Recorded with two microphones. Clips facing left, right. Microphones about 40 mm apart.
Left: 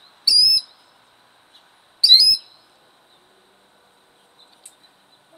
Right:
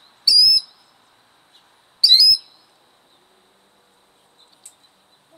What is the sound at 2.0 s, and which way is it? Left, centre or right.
Bird, centre.